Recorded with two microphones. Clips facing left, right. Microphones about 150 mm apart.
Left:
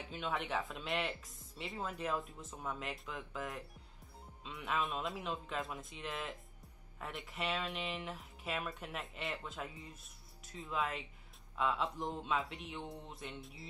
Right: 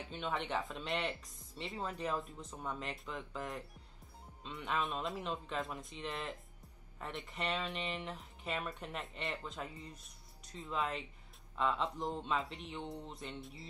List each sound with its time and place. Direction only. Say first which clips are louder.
0.1 s speech: even; centre (ahead or behind)